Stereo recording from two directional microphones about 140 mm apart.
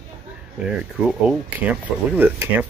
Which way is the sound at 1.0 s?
5° right (ahead or behind).